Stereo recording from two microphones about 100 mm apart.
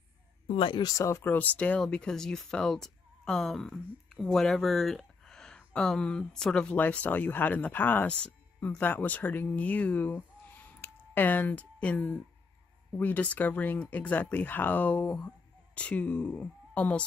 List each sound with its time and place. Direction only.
0.5 s speech: 60° left (ahead or behind)
0.8 s speech: 30° left (ahead or behind); by 17.0 s 15° left (ahead or behind)